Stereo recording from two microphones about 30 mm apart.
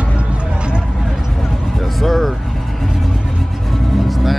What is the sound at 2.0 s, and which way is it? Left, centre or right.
Speech, centre.